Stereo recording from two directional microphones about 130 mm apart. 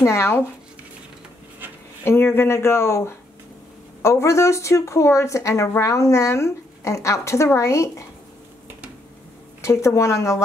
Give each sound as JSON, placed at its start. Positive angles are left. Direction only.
{"t": 0.0, "sound": "speech", "side_deg": 20}
{"t": 2.0, "sound": "speech", "side_deg": 20}
{"t": 9.6, "sound": "speech", "side_deg": 25}